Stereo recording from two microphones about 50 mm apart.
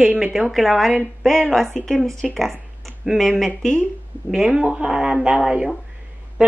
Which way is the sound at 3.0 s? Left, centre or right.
Centre.